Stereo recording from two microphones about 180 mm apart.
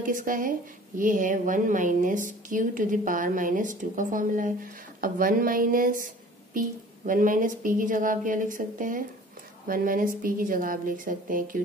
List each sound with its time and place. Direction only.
0.0 s a woman's voice: 50° right (ahead or behind)
7.1 s a woman's voice: 50° right (ahead or behind)